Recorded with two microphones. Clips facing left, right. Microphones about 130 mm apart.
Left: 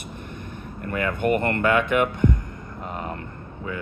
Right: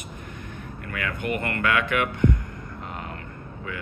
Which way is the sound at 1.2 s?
45° left (ahead or behind).